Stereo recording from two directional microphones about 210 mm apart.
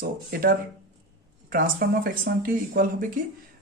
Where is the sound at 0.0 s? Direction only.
45° right (ahead or behind).